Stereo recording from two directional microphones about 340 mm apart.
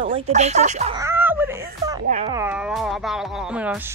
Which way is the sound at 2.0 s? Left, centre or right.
Centre.